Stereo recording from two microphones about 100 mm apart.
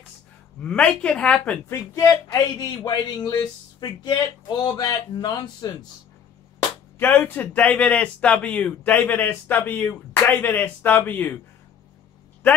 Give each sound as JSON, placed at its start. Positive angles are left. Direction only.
{"t": 0.7, "sound": "speech", "side_deg": 10}
{"t": 1.7, "sound": "speech", "side_deg": 30}
{"t": 7.0, "sound": "speech", "side_deg": 20}